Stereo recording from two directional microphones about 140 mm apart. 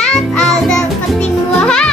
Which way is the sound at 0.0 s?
5° left (ahead or behind).